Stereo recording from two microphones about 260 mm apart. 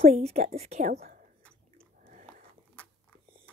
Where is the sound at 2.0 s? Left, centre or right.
Right.